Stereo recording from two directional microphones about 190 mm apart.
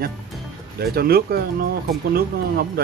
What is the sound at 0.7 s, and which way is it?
Speech, 55° right (ahead or behind).